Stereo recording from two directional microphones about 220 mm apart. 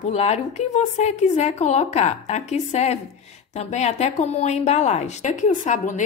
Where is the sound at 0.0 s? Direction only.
30° left (ahead or behind).